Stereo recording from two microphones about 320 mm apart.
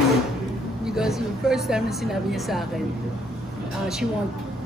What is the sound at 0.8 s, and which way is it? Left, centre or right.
A woman's voice, centre.